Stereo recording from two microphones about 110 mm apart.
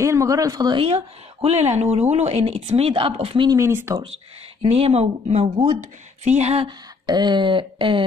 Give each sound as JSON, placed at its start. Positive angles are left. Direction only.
{"t": 0.0, "sound": "speech", "side_deg": -25}
{"t": 0.7, "sound": "speech", "side_deg": -65}
{"t": 3.4, "sound": "speech", "side_deg": -25}
{"t": 4.6, "sound": "speech", "side_deg": -65}
{"t": 6.2, "sound": "speech", "side_deg": -85}
{"t": 7.1, "sound": "speech", "side_deg": -40}